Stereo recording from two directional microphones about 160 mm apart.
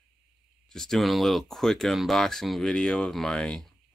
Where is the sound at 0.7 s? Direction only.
5° left (ahead or behind).